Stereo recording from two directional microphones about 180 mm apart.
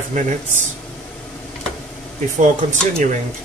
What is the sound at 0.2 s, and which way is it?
Speech, 45° right (ahead or behind).